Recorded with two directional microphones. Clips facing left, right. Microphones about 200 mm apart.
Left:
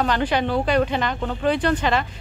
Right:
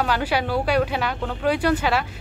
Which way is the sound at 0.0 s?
5° right (ahead or behind).